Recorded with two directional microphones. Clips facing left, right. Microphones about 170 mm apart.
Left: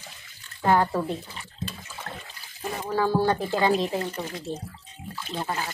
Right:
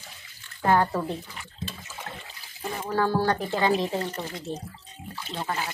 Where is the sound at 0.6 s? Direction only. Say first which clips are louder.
Left 1 dB; 5° left (ahead or behind).